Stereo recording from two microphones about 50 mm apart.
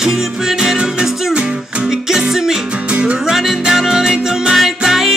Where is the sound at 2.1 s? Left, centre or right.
Centre.